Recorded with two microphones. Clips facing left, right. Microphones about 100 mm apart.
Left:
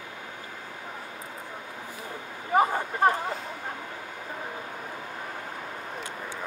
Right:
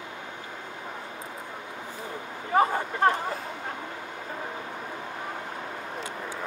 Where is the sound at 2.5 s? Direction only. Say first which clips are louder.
Even; 15° left (ahead or behind).